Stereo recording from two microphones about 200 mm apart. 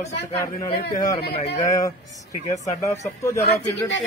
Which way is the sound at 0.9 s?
20° left (ahead or behind).